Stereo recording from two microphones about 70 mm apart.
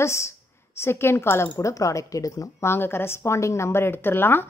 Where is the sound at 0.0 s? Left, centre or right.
Left.